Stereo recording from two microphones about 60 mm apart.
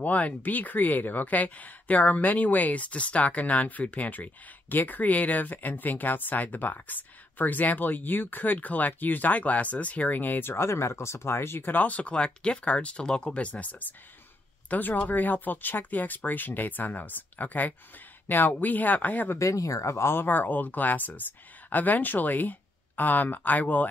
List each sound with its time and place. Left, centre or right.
0.0 s speech: left
19.3 s speech: left